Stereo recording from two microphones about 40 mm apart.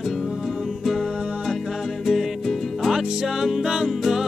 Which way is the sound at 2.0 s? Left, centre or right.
Centre.